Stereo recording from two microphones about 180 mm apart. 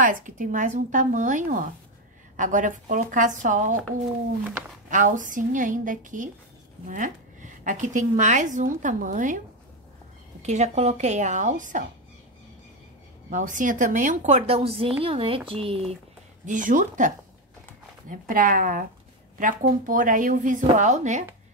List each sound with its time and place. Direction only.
0.0 s a woman's voice: 50° right (ahead or behind)
4.8 s a woman's voice: 45° right (ahead or behind)
10.4 s a woman's voice: 40° right (ahead or behind)
13.3 s a woman's voice: 45° right (ahead or behind)
16.4 s a woman's voice: 45° right (ahead or behind)
18.1 s a woman's voice: 50° right (ahead or behind)